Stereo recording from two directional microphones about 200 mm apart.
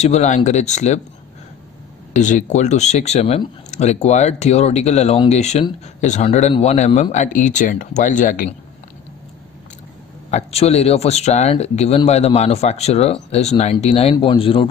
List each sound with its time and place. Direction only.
0.0 s speech: 35° left (ahead or behind)
2.1 s speech: 35° left (ahead or behind)
10.3 s a man's voice: 30° left (ahead or behind)